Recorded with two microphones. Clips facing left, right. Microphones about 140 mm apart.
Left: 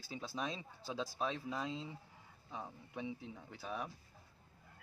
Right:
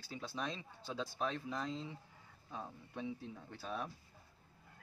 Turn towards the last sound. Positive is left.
turn(degrees=5)  # may be behind; listen again after turning